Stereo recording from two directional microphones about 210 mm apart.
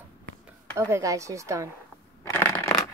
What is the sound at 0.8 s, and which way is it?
Speech, 15° right (ahead or behind).